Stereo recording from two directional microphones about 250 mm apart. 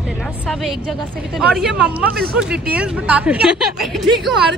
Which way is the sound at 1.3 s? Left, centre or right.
Centre.